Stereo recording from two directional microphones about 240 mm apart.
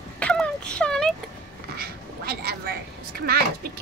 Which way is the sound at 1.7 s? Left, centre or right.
Right.